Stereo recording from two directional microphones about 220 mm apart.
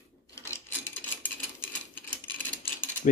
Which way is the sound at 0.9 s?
10° left (ahead or behind).